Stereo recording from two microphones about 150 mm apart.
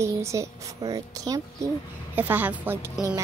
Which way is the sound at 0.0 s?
20° right (ahead or behind).